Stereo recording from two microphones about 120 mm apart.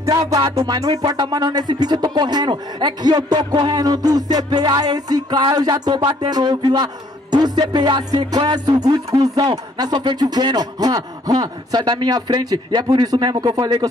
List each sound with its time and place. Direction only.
0.0 s music: 25° right (ahead or behind)